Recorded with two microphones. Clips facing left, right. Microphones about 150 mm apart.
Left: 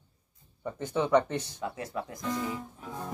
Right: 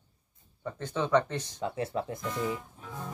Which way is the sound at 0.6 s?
10° left (ahead or behind).